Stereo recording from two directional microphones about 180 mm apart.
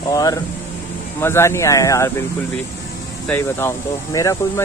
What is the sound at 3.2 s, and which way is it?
Speech, 10° left (ahead or behind).